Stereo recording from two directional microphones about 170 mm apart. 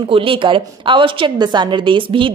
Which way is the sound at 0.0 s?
30° right (ahead or behind).